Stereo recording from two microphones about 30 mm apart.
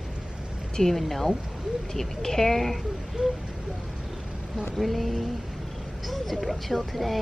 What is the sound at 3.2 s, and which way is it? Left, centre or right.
Speech, right.